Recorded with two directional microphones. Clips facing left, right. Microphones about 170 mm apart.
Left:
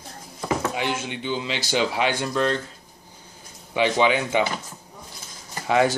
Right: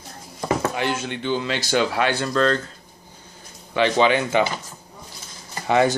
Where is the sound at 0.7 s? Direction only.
15° left (ahead or behind).